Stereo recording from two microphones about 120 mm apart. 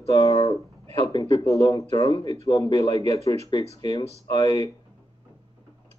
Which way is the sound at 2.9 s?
60° right (ahead or behind).